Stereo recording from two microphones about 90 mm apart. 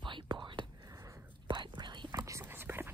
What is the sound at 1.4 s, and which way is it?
Whispering, 60° right (ahead or behind).